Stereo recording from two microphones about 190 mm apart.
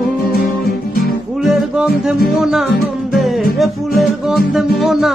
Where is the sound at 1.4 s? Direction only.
Centre (ahead or behind).